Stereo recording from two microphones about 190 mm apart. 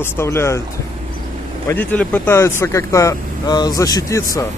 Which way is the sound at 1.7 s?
10° left (ahead or behind).